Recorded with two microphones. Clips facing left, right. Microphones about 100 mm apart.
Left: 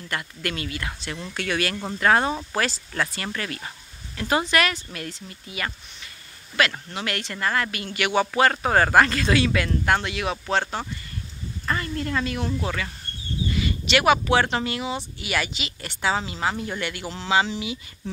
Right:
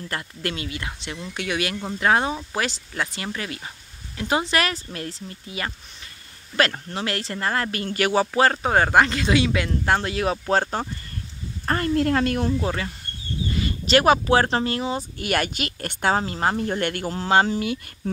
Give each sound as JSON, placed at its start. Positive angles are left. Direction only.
{"t": 0.1, "sound": "speech", "side_deg": -30}
{"t": 11.6, "sound": "a woman's voice", "side_deg": -55}
{"t": 11.9, "sound": "speech", "side_deg": -65}
{"t": 12.6, "sound": "speech", "side_deg": -30}